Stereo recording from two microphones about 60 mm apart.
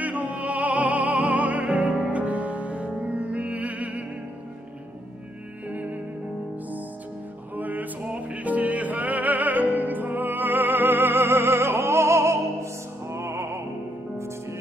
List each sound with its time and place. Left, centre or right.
0.0 s music: right
5.7 s music: right
7.5 s music: right